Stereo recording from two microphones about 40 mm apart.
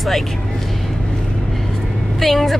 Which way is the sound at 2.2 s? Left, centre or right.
Centre.